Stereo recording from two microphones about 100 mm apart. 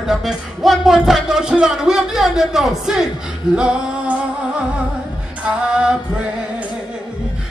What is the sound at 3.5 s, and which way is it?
Male singing, 10° right (ahead or behind).